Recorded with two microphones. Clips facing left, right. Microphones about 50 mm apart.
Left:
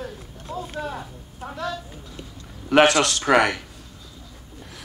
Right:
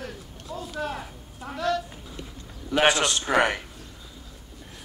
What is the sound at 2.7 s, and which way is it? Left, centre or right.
Speech, left.